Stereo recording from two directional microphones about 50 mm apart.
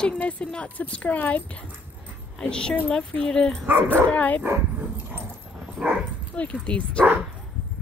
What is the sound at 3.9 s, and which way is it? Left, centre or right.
Speech, left.